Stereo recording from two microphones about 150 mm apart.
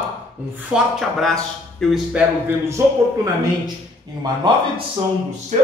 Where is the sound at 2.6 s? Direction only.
20° right (ahead or behind).